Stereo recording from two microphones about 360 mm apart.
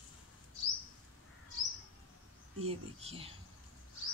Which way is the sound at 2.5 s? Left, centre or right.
Centre.